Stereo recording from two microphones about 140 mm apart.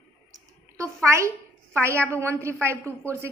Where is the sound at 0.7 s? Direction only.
20° right (ahead or behind).